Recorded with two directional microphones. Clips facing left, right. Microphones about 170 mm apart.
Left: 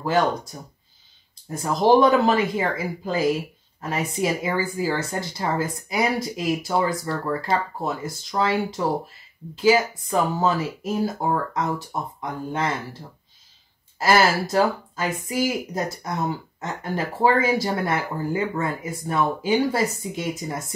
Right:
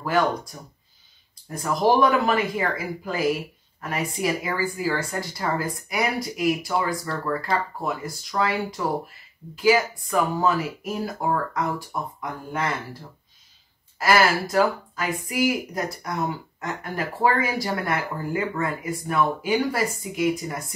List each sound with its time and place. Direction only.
0.5 s speech: 30° left (ahead or behind)
3.8 s speech: 25° left (ahead or behind)
13.9 s speech: 25° left (ahead or behind)